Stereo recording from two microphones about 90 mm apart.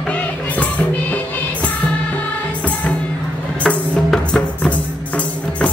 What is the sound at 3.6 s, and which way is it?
Music, 10° left (ahead or behind).